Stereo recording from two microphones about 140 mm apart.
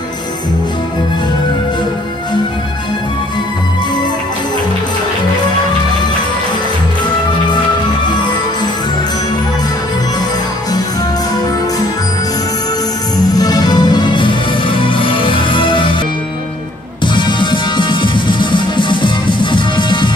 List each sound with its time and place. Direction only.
13.3 s music: 25° left (ahead or behind)
17.0 s music: 35° left (ahead or behind)